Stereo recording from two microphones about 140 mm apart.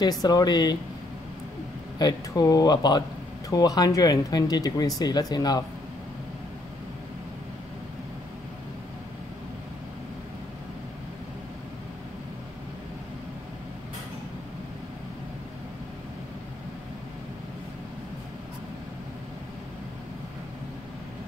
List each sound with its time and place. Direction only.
0.0 s speech: 30° left (ahead or behind)
2.0 s speech: 30° left (ahead or behind)